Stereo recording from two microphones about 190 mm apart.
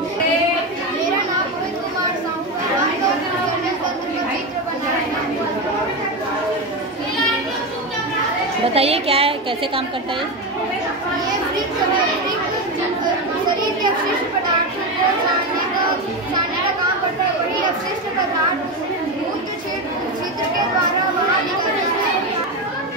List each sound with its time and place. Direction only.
8.7 s a woman's voice: 30° right (ahead or behind)